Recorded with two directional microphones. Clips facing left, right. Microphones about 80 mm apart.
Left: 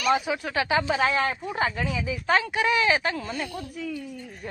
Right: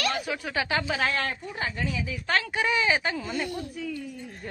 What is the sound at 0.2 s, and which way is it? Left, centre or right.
A woman's voice, centre.